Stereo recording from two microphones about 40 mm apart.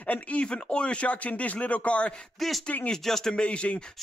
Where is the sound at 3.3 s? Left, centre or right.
Left.